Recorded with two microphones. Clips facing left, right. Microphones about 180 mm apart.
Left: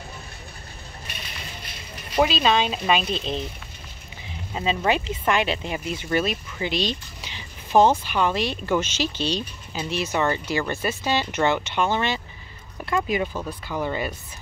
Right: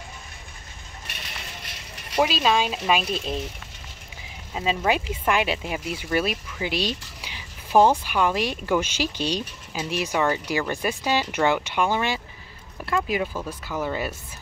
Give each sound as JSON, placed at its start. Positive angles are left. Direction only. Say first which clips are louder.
{"t": 2.2, "sound": "speech", "louder": "left 1 dB", "side_deg": -5}
{"t": 4.6, "sound": "speech", "louder": "even", "side_deg": -5}
{"t": 6.6, "sound": "a sound", "louder": "left 1 dB", "side_deg": -10}
{"t": 8.0, "sound": "speech", "louder": "even", "side_deg": -10}